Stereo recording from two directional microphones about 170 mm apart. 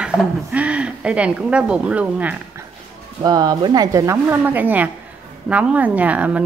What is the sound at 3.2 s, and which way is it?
Speech, 25° right (ahead or behind).